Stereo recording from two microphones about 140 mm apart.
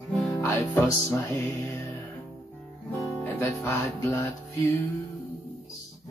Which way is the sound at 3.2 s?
15° left (ahead or behind).